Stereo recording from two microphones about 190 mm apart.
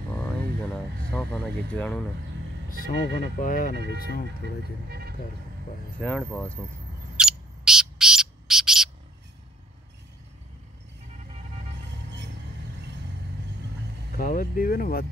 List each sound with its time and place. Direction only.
1.1 s speech: 10° left (ahead or behind)
2.7 s speech: 65° right (ahead or behind)
3.3 s speech: 45° left (ahead or behind)
3.7 s speech: 60° right (ahead or behind)
5.9 s speech: 5° left (ahead or behind)
7.2 s bird: 5° right (ahead or behind)
14.1 s speech: 50° left (ahead or behind)